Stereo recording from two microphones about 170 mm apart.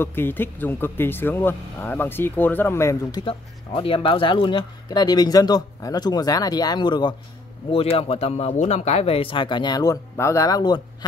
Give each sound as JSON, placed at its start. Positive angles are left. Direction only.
{"t": 0.0, "sound": "speech", "side_deg": 10}